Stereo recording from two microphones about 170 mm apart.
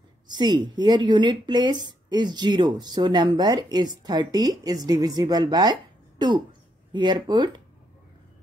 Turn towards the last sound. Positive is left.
turn(degrees=-25)  # may be behind; listen again after turning